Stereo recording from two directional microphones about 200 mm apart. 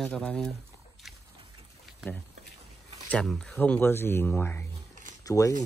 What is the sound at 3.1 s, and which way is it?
Speech, 5° left (ahead or behind).